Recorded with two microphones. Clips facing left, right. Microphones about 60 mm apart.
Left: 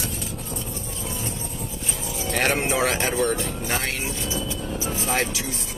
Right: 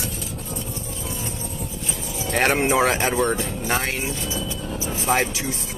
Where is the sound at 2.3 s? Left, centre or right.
Right.